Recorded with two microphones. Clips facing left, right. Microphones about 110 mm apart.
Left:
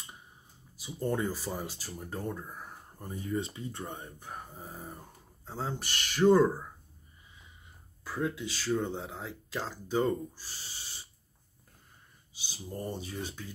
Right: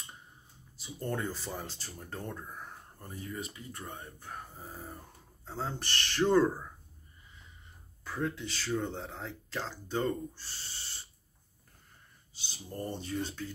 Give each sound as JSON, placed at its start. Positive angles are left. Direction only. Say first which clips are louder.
{"t": 0.7, "sound": "speech", "louder": "left 4 dB", "side_deg": 10}
{"t": 3.1, "sound": "speech", "louder": "left 7 dB", "side_deg": 30}
{"t": 4.6, "sound": "a sound", "louder": "left 1 dB", "side_deg": 5}
{"t": 5.4, "sound": "speech", "louder": "left 1 dB", "side_deg": 10}
{"t": 8.0, "sound": "speech", "louder": "left 2 dB", "side_deg": 5}
{"t": 12.4, "sound": "speech", "louder": "left 1 dB", "side_deg": 10}